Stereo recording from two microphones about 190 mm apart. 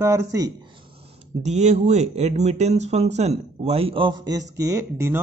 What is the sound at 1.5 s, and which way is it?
Speech, 35° right (ahead or behind).